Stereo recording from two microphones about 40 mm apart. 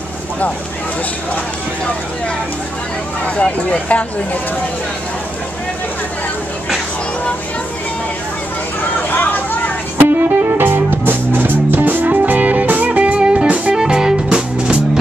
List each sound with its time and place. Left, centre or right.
3.3 s speech: left
9.1 s a sound: left
9.9 s music: right
13.7 s music: centre